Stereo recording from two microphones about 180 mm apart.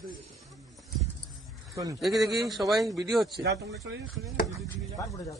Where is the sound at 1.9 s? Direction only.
Centre (ahead or behind).